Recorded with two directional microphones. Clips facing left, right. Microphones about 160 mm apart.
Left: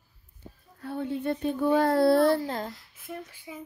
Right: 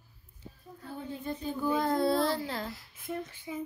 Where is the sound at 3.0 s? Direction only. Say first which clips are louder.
Right 2 dB; 10° left (ahead or behind).